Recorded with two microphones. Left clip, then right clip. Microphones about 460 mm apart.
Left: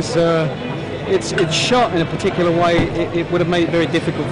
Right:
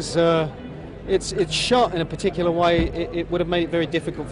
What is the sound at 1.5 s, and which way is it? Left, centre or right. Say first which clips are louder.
A man's voice: left 3 dB; right.